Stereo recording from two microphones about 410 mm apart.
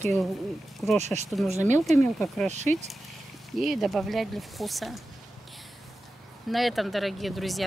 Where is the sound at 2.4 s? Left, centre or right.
Centre.